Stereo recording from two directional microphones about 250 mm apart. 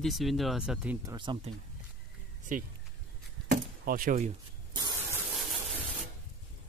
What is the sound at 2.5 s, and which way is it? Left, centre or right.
Speech, right.